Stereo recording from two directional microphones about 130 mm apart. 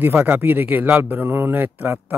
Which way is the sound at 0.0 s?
15° right (ahead or behind).